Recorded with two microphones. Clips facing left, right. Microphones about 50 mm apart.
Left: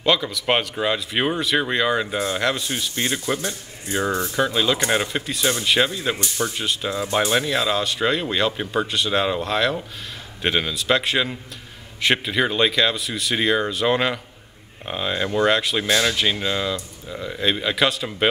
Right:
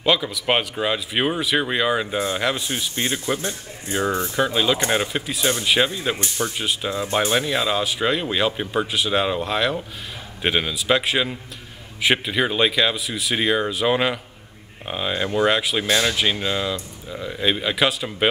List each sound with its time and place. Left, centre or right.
0.0 s speech: centre
3.3 s a man's voice: right
4.4 s speech: centre